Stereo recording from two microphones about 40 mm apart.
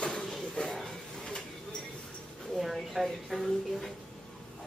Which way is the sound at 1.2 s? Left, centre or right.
Centre.